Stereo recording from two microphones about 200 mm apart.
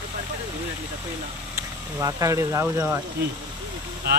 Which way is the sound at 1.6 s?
15° right (ahead or behind).